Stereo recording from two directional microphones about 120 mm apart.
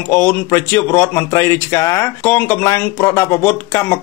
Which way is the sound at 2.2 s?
15° left (ahead or behind).